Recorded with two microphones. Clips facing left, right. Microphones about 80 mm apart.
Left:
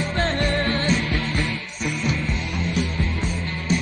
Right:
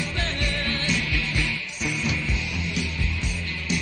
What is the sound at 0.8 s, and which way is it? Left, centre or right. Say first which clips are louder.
Music: left 5 dB; left.